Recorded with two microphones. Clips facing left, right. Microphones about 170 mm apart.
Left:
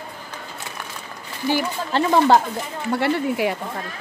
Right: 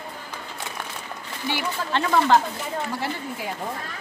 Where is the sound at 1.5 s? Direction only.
40° left (ahead or behind).